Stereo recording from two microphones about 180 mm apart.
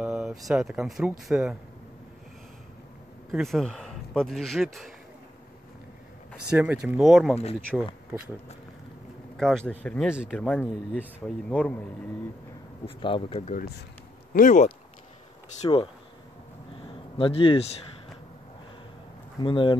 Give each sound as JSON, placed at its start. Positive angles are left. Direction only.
{"t": 0.0, "sound": "a sound", "side_deg": -5}
{"t": 0.5, "sound": "speech", "side_deg": -5}
{"t": 3.3, "sound": "speech", "side_deg": 0}
{"t": 6.5, "sound": "speech", "side_deg": -5}
{"t": 9.4, "sound": "speech", "side_deg": 5}
{"t": 12.8, "sound": "speech", "side_deg": 30}
{"t": 13.5, "sound": "speech", "side_deg": 60}
{"t": 14.3, "sound": "speech", "side_deg": 45}
{"t": 15.6, "sound": "speech", "side_deg": 30}
{"t": 16.7, "sound": "a sound", "side_deg": 30}
{"t": 19.4, "sound": "speech", "side_deg": 30}